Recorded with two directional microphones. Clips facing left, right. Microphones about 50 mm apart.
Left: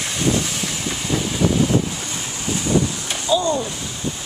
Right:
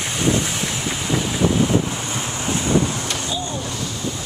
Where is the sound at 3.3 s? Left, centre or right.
Left.